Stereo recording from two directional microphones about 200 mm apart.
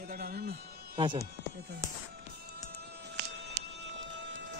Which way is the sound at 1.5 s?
55° right (ahead or behind).